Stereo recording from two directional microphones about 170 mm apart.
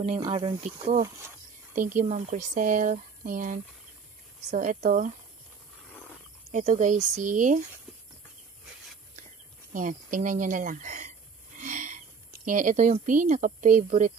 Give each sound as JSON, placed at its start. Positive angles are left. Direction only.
{"t": 0.2, "sound": "speech", "side_deg": -25}
{"t": 0.7, "sound": "speech", "side_deg": -45}
{"t": 6.5, "sound": "speech", "side_deg": -45}
{"t": 9.7, "sound": "speech", "side_deg": -50}
{"t": 11.5, "sound": "a sound", "side_deg": -50}
{"t": 12.3, "sound": "speech", "side_deg": -50}